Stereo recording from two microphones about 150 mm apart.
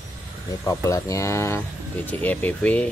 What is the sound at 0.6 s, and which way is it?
Speech, 20° left (ahead or behind).